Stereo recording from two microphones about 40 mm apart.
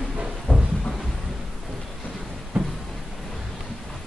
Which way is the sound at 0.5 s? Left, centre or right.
Left.